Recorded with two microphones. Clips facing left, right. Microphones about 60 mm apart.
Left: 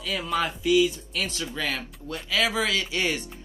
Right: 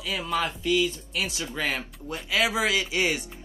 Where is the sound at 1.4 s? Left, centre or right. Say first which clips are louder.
Right 1 dB; right.